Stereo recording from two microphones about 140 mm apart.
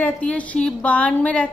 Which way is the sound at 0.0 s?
10° left (ahead or behind).